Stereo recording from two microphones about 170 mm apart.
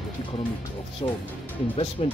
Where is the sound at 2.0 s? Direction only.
35° left (ahead or behind).